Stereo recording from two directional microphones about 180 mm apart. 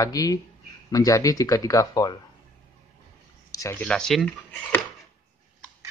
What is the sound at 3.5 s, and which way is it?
Speech, 15° left (ahead or behind).